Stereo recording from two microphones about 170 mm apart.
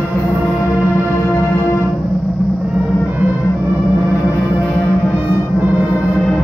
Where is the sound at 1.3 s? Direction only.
15° left (ahead or behind).